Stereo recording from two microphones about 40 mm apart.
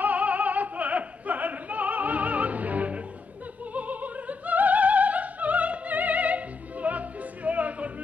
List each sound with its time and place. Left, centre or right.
0.0 s opera: right